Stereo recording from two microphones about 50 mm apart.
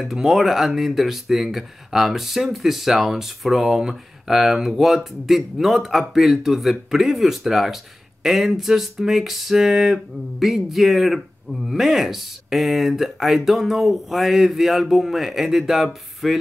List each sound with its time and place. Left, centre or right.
0.0 s speech: centre